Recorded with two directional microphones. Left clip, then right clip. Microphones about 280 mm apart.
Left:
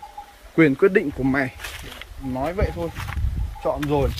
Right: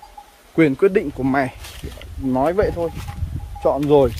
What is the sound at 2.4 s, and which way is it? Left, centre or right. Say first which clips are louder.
Speech: right 7 dB; right.